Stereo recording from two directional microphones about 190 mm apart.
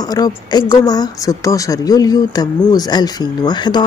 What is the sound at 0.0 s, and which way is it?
Speech, 20° left (ahead or behind).